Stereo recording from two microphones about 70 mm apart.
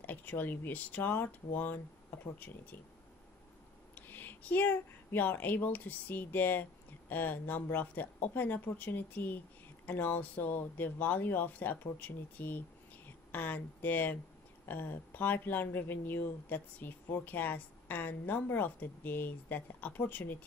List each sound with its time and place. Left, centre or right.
0.0 s speech: left
3.9 s speech: left